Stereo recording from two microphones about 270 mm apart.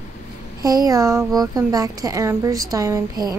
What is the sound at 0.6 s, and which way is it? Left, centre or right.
A child's voice, centre.